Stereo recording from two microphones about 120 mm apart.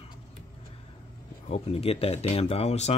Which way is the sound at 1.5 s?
55° left (ahead or behind).